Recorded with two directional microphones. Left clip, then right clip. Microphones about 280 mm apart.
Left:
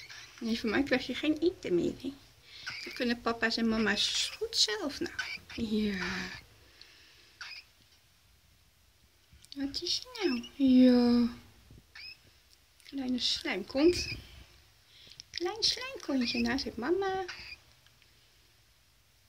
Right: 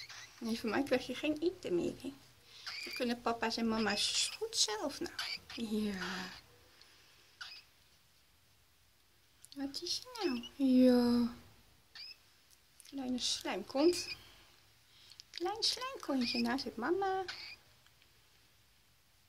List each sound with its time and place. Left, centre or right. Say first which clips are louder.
0.4 s speech: left 5 dB; centre
4.0 s speech: left 4 dB; right
4.6 s speech: left 4 dB; centre
5.1 s speech: left 3 dB; centre
9.8 s speech: left 6 dB; centre
12.9 s speech: left 5 dB; centre
15.0 s speech: left 5 dB; centre